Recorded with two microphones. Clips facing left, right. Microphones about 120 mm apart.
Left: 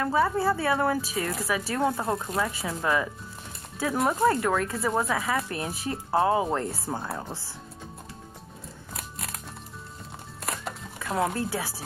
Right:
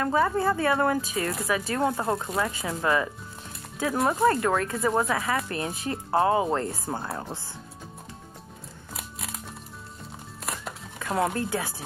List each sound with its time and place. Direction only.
0.1 s speech: 5° left (ahead or behind)
8.9 s music: centre (ahead or behind)
10.4 s music: centre (ahead or behind)